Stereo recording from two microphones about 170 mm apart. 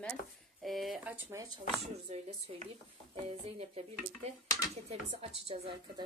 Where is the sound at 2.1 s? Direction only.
40° right (ahead or behind).